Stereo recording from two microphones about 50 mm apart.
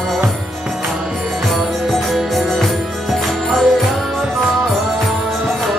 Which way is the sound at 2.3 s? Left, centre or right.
Centre.